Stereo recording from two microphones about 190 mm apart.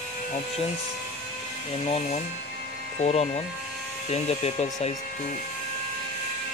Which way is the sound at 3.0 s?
35° left (ahead or behind).